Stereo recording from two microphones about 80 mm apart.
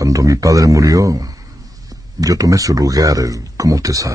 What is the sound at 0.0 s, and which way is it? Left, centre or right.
Speech, right.